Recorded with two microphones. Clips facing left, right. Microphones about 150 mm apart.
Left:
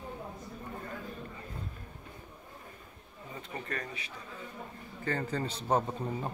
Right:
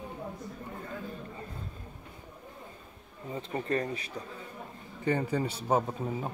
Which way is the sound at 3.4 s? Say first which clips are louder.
Right 9 dB; 30° right (ahead or behind).